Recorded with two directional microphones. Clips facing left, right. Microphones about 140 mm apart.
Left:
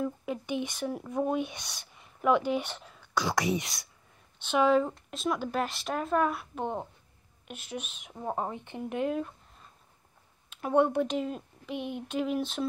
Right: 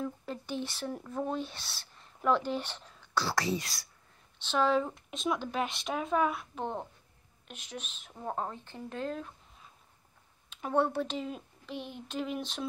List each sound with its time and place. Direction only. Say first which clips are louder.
0.0 s speech: left 4 dB; 10° left (ahead or behind)
3.3 s speech: left 5 dB; 20° left (ahead or behind)
4.4 s speech: left 4 dB; 10° left (ahead or behind)
10.7 s speech: left 4 dB; 15° left (ahead or behind)
11.2 s a sound: left 4 dB; centre (ahead or behind)
11.7 s a sound: left 6 dB; 55° left (ahead or behind)
12.1 s speech: left 5 dB; 5° left (ahead or behind)